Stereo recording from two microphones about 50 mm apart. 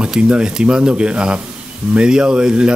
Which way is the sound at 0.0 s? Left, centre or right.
Centre.